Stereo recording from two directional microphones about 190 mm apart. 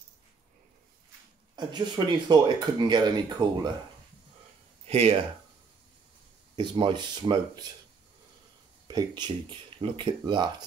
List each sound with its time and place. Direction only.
1.6 s speech: 25° right (ahead or behind)
4.8 s speech: 30° right (ahead or behind)
6.5 s speech: 25° right (ahead or behind)
8.8 s speech: 20° right (ahead or behind)